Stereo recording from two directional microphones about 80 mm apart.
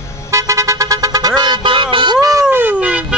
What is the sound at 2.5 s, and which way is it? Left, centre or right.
Cat, centre.